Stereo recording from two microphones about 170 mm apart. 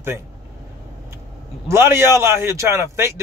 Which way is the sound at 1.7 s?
15° right (ahead or behind).